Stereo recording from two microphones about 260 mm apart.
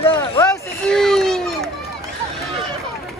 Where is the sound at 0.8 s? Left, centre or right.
Centre.